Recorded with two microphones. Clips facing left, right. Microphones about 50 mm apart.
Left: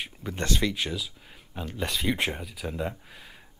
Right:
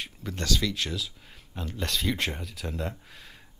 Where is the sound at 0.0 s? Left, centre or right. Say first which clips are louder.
Left 2 dB; centre.